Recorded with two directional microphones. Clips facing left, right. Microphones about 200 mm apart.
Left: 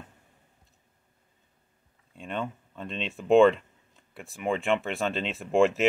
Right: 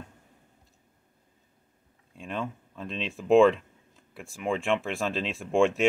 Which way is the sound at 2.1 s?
Centre (ahead or behind).